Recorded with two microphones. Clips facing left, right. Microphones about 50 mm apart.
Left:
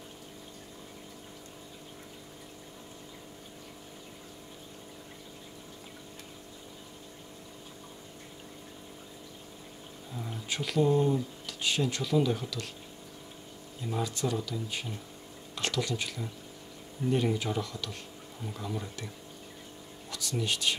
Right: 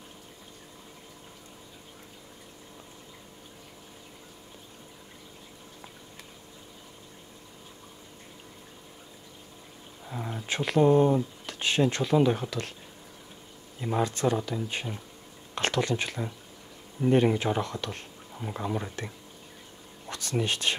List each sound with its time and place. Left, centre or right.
10.3 s speech: right
13.7 s speech: right
20.1 s speech: right